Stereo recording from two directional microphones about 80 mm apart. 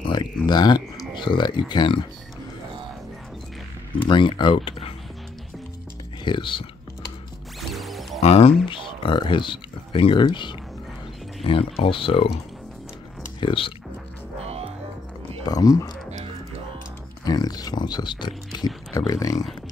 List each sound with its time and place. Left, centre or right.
0.0 s a sound: left
0.5 s speech: left
4.0 s speech: left
6.2 s speech: left
7.7 s music: centre
8.6 s speech: left
13.4 s speech: left
15.4 s speech: left
17.2 s speech: left
18.9 s speech: left